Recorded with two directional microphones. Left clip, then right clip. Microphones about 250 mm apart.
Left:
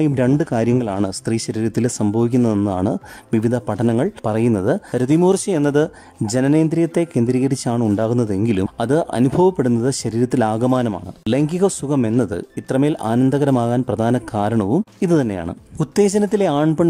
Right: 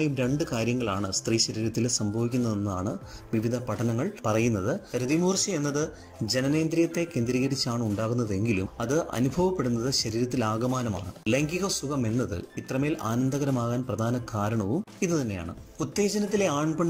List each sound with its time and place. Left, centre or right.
0.0 s speech: left